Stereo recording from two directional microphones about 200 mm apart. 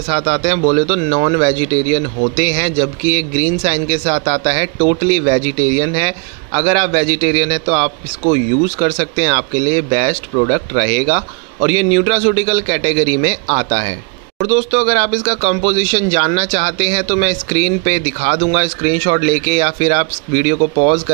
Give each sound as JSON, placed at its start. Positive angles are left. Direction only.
{"t": 0.1, "sound": "speech", "side_deg": -30}